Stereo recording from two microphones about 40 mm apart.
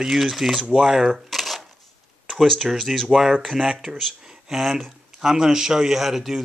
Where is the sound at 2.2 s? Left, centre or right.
Centre.